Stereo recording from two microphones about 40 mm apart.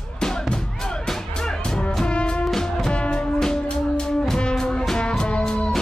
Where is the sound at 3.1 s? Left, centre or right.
Centre.